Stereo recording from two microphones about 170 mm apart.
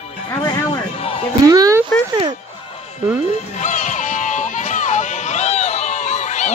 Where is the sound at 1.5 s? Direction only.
20° right (ahead or behind).